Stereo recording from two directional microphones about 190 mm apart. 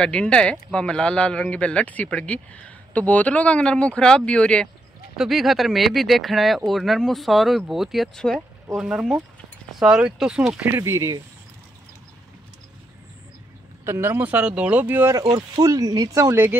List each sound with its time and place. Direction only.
0.0 s speech: 5° left (ahead or behind)
10.7 s speech: 15° right (ahead or behind)
13.8 s speech: 15° right (ahead or behind)